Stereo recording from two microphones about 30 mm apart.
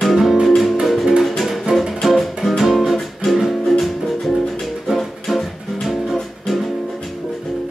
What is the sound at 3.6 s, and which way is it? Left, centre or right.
Music, centre.